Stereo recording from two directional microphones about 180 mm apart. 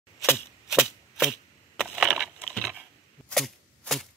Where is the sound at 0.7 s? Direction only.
5° right (ahead or behind).